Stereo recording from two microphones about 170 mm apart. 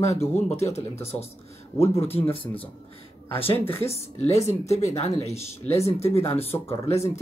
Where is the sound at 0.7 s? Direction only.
35° left (ahead or behind).